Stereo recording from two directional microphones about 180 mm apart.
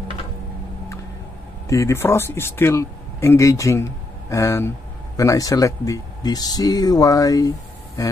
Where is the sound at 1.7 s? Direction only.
15° left (ahead or behind).